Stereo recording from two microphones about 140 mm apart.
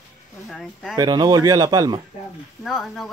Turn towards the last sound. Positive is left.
turn(degrees=0)  # may be behind; listen again after turning